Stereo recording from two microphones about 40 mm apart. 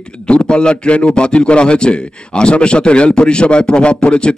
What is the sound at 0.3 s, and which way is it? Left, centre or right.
A man's voice, left.